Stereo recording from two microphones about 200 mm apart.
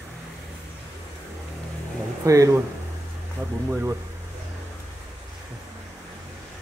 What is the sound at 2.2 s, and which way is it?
Speech, 15° right (ahead or behind).